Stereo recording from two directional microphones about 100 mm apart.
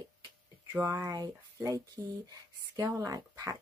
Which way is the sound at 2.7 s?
35° right (ahead or behind).